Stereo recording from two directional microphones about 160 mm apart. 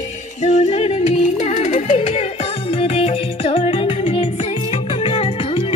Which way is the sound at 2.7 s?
40° left (ahead or behind).